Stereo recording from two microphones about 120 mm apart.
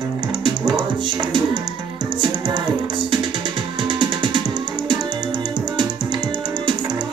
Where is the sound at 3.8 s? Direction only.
40° right (ahead or behind).